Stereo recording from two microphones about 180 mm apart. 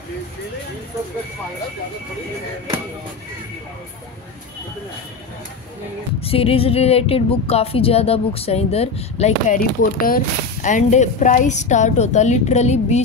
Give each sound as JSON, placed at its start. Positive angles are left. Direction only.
{"t": 6.2, "sound": "speech", "side_deg": 30}